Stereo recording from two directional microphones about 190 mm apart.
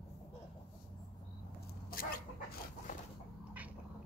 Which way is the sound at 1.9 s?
50° left (ahead or behind).